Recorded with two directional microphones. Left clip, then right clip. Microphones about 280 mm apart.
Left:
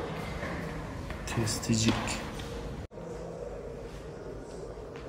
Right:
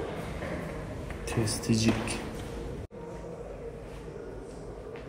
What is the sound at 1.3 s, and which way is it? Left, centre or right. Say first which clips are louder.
Speech: right 2 dB; centre.